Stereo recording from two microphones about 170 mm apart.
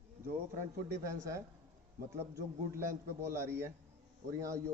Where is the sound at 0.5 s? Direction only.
15° right (ahead or behind).